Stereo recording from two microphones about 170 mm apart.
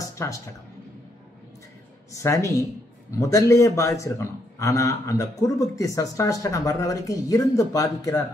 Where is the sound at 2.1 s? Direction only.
15° left (ahead or behind).